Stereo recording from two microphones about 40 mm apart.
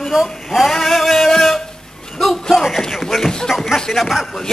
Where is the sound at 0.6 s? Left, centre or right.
Centre.